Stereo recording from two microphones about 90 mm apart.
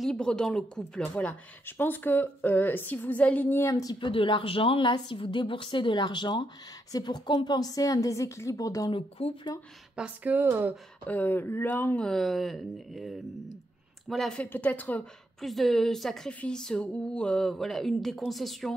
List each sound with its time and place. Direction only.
0.0 s a woman's voice: 10° left (ahead or behind); by 3.7 s 25° left (ahead or behind)
4.0 s speech: 75° left (ahead or behind)
4.9 s a woman's voice: 70° left (ahead or behind)
6.9 s a woman's voice: 45° left (ahead or behind)
8.9 s speech: 70° left (ahead or behind)
9.9 s speech: 15° right (ahead or behind)
11.1 s speech: 20° left (ahead or behind); by 14.4 s centre (ahead or behind)
14.4 s speech: 15° left (ahead or behind)
15.4 s speech: centre (ahead or behind)